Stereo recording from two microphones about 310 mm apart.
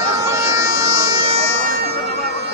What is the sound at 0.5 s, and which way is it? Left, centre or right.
Bagpipes, centre.